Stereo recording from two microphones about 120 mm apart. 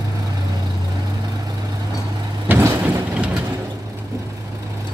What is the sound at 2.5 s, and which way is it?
Vehicle, 25° right (ahead or behind).